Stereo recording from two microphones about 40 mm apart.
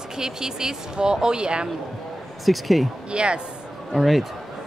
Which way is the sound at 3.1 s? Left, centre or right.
Right.